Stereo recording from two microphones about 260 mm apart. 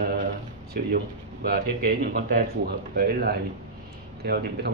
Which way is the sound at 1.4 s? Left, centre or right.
Right.